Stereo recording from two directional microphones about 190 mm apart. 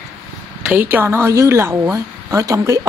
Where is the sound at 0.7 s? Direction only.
10° right (ahead or behind).